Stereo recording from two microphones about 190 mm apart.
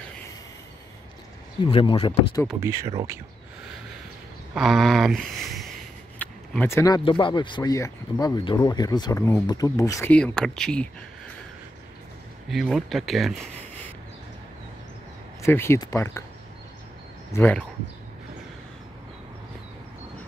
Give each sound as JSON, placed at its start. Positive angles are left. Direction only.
{"t": 1.7, "sound": "speech", "side_deg": 30}
{"t": 2.6, "sound": "speech", "side_deg": -15}
{"t": 4.6, "sound": "a sound", "side_deg": 0}
{"t": 7.1, "sound": "speech", "side_deg": 25}
{"t": 12.4, "sound": "speech", "side_deg": 0}
{"t": 15.4, "sound": "speech", "side_deg": 15}
{"t": 17.3, "sound": "speech", "side_deg": 10}